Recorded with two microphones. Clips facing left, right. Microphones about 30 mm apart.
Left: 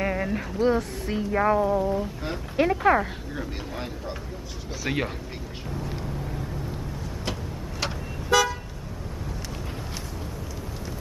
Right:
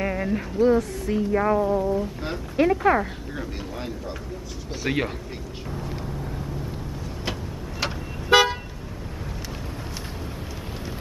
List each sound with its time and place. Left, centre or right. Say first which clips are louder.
0.0 s a sound: right 1 dB; centre
0.6 s speech: right 4 dB; left
1.3 s speech: left 1 dB; centre
5.9 s vehicle: right 1 dB; centre
8.3 s toot: right 4 dB; right